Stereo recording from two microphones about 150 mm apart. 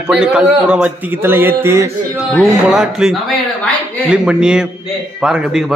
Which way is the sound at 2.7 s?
5° right (ahead or behind).